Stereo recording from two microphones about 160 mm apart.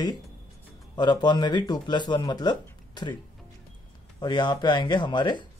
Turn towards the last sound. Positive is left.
turn(degrees=30)  # may be behind; listen again after turning